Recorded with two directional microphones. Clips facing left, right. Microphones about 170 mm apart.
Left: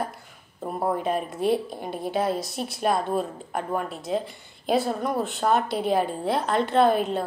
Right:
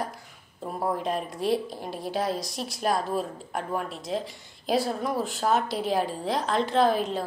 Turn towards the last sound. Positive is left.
turn(degrees=0)  # may be behind; listen again after turning